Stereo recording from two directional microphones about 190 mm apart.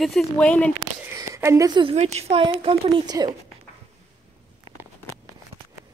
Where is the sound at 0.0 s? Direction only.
Centre (ahead or behind).